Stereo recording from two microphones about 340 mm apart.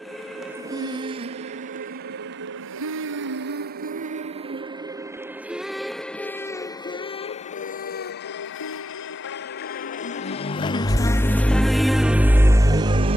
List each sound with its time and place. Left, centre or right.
0.7 s music: centre
2.8 s music: right
5.5 s music: centre
10.0 s music: centre